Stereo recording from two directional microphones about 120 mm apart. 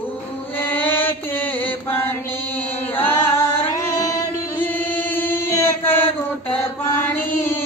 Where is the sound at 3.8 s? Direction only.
30° left (ahead or behind).